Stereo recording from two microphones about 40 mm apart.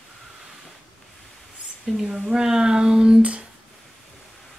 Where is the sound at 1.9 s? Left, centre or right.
Centre.